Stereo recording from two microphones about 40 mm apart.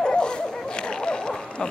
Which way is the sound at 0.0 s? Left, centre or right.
Left.